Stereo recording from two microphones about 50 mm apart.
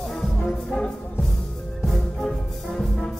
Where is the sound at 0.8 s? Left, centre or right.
Centre.